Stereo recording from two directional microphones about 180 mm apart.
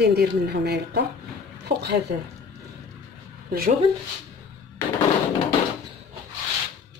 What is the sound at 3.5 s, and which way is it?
Speech, 55° right (ahead or behind).